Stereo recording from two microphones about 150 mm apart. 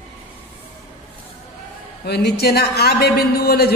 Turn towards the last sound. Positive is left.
turn(degrees=90)